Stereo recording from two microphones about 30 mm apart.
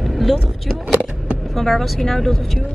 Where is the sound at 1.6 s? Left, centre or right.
Centre.